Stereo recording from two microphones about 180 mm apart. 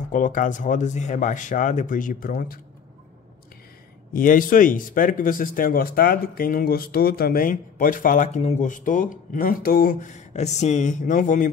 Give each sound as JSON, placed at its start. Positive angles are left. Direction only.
{"t": 0.1, "sound": "speech", "side_deg": 45}
{"t": 4.1, "sound": "speech", "side_deg": 50}